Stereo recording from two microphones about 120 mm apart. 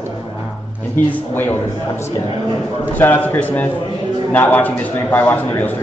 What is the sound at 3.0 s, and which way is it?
Speech, 20° left (ahead or behind).